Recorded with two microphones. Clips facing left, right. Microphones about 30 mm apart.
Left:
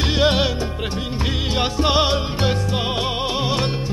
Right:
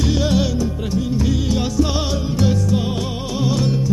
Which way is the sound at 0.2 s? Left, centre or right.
Left.